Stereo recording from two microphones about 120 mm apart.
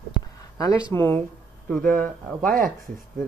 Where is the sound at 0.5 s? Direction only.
30° left (ahead or behind).